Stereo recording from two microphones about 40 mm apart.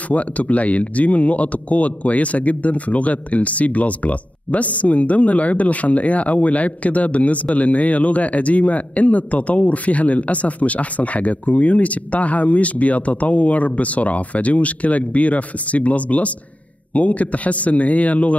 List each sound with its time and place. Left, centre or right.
0.1 s speech: left